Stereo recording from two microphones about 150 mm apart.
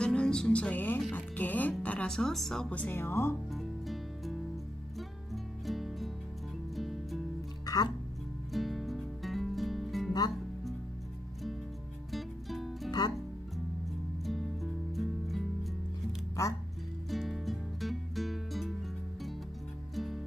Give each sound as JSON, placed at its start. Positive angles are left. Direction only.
{"t": 0.0, "sound": "music", "side_deg": 5}
{"t": 3.5, "sound": "music", "side_deg": 0}
{"t": 7.6, "sound": "music", "side_deg": 25}
{"t": 8.5, "sound": "music", "side_deg": 0}
{"t": 12.1, "sound": "music", "side_deg": 0}
{"t": 14.2, "sound": "music", "side_deg": 0}
{"t": 16.4, "sound": "music", "side_deg": 20}
{"t": 17.1, "sound": "music", "side_deg": 0}